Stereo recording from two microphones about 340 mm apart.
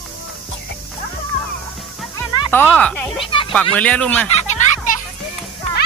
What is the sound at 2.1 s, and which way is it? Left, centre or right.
Music, centre.